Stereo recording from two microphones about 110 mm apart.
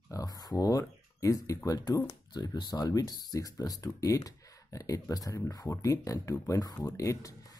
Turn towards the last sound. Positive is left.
turn(degrees=30)  # may be behind; listen again after turning